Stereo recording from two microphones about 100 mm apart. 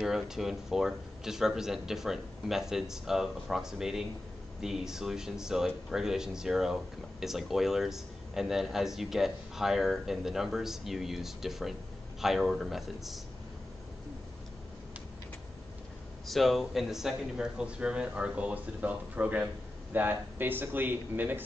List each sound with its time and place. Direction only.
0.0 s speech: 5° right (ahead or behind)
16.3 s a man's voice: centre (ahead or behind); by 21.4 s 20° right (ahead or behind)